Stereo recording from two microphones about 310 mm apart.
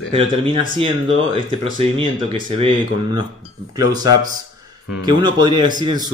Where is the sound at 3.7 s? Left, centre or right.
Centre.